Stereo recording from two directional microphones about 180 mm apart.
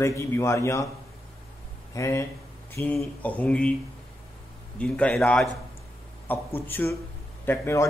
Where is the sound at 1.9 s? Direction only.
15° left (ahead or behind).